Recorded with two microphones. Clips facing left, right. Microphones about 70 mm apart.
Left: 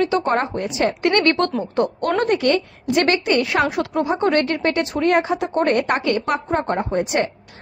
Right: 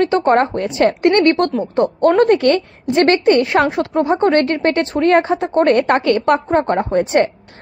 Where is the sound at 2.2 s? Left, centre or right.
Right.